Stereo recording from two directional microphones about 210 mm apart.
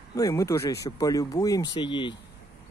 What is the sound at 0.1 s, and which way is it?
Speech, 15° left (ahead or behind).